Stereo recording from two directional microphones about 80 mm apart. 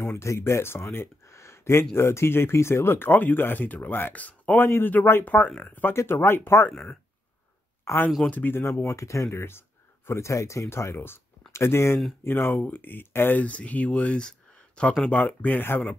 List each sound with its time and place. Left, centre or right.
0.0 s speech: left
6.7 s speech: centre
7.8 s speech: left